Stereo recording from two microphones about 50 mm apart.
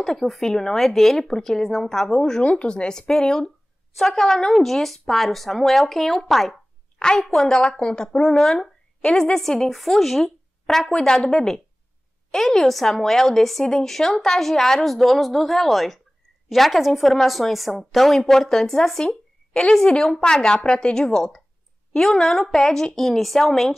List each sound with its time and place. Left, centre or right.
0.0 s a woman's voice: centre
7.0 s a woman's voice: centre